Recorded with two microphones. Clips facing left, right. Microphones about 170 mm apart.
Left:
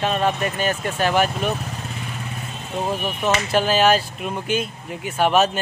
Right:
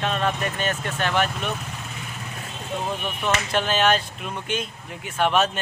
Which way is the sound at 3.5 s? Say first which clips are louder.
Left 4 dB; 5° left (ahead or behind).